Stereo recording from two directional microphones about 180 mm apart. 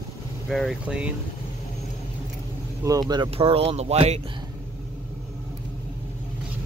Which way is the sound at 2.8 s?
20° right (ahead or behind).